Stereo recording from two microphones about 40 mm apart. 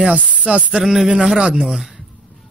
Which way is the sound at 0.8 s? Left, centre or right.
Centre.